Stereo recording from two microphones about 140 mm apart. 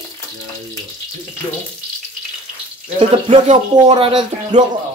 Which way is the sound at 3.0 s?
45° right (ahead or behind).